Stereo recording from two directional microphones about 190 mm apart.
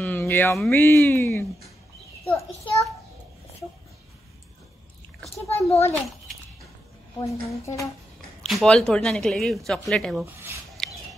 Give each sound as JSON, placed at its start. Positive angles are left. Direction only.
{"t": 0.0, "sound": "a sound", "side_deg": 10}
{"t": 0.7, "sound": "speech", "side_deg": 15}
{"t": 5.3, "sound": "a child's voice", "side_deg": 30}
{"t": 7.2, "sound": "speech", "side_deg": 15}
{"t": 8.4, "sound": "a woman's voice", "side_deg": 0}
{"t": 10.8, "sound": "a sound", "side_deg": 5}